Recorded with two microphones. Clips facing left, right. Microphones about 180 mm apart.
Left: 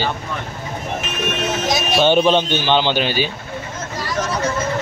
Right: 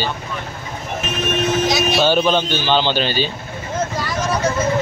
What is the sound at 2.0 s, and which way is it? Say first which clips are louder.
Speech: left 4 dB; 25° left (ahead or behind).